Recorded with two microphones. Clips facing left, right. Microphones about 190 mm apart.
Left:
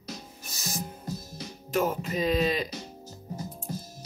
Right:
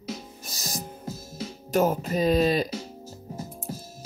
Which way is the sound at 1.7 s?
40° right (ahead or behind).